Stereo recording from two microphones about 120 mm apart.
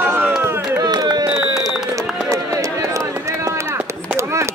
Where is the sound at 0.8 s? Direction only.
35° right (ahead or behind).